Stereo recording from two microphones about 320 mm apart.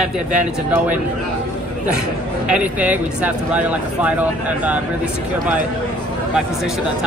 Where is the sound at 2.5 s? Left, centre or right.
Centre.